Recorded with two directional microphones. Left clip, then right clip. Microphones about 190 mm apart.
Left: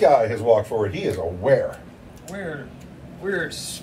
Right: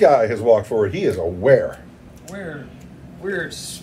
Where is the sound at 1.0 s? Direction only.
30° right (ahead or behind).